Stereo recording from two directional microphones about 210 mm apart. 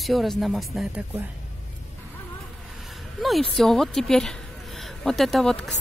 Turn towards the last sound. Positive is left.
turn(degrees=5)  # may be behind; listen again after turning